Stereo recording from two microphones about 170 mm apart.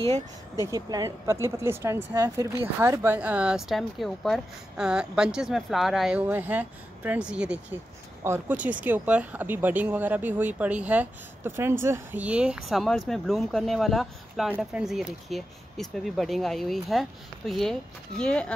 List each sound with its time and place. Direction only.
0.0 s speech: 15° left (ahead or behind)
0.7 s speech: 20° right (ahead or behind); by 18.5 s 5° left (ahead or behind)